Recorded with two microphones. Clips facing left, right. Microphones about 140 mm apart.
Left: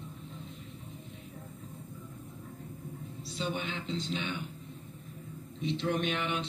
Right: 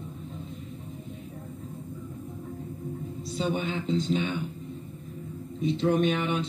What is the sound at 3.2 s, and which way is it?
Speech, 45° right (ahead or behind).